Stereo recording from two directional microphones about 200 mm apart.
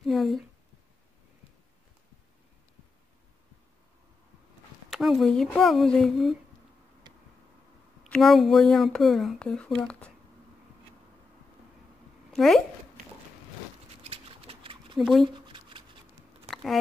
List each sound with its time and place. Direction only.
0.0 s speech: centre (ahead or behind)
4.8 s speech: centre (ahead or behind)
8.0 s speech: centre (ahead or behind)
12.3 s speech: centre (ahead or behind)
14.0 s a sound: 30° right (ahead or behind)
15.0 s speech: centre (ahead or behind)
15.2 s a sound: 25° right (ahead or behind)